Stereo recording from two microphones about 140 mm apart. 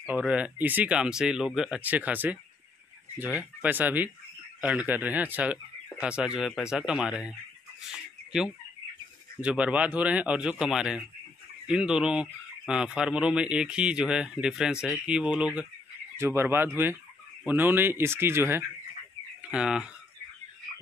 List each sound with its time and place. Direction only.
0.0 s speech: 10° right (ahead or behind)
7.8 s chicken: 5° right (ahead or behind)
9.4 s speech: 10° right (ahead or behind)